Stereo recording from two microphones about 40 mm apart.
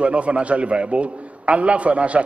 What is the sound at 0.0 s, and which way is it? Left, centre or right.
A man's voice, right.